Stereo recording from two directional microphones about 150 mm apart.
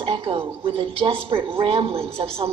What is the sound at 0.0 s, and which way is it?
A woman's voice, 35° right (ahead or behind).